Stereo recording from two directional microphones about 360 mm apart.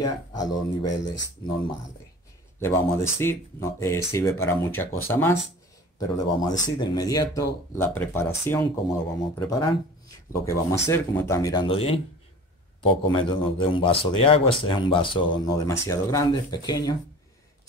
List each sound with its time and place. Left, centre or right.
0.0 s speech: centre
1.0 s speech: left
2.6 s speech: centre